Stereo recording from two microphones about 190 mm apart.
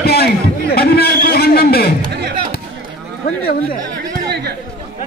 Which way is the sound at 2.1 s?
60° right (ahead or behind).